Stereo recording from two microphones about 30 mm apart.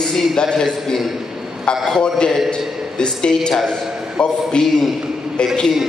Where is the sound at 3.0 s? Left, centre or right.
Left.